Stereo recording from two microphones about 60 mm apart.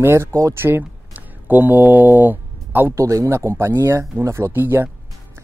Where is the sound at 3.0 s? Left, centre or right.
Right.